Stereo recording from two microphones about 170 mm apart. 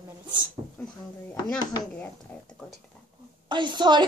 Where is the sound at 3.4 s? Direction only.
25° right (ahead or behind).